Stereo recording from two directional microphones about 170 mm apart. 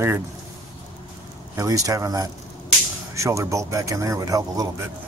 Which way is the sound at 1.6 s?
20° right (ahead or behind).